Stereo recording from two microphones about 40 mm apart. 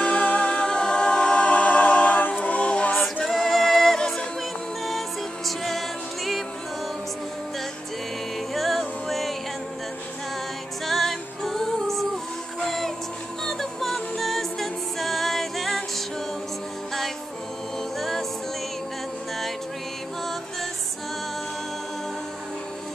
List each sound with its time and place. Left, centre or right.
0.0 s a capella: left
1.4 s a capella: left
3.3 s music: centre
5.6 s music: centre
8.5 s music: centre
10.9 s music: centre